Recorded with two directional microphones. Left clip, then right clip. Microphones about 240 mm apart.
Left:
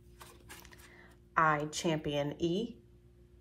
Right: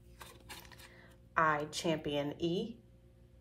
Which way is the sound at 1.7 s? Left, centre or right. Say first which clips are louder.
Left 1 dB; centre.